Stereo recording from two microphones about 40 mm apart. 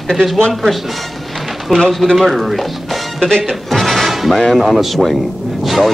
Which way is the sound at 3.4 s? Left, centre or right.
Centre.